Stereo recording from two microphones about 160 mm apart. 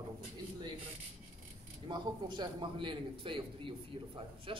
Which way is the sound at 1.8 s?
30° right (ahead or behind).